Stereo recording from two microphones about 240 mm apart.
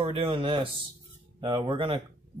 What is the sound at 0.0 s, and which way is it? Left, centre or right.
Speech, right.